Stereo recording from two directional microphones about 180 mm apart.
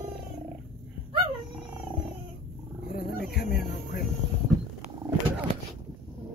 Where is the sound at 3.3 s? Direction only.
55° left (ahead or behind).